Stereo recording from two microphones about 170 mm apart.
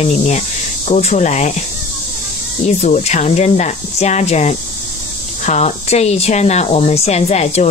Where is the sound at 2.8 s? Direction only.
40° left (ahead or behind).